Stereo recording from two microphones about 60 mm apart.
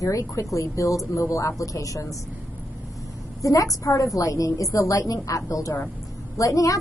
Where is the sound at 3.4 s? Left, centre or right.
Left.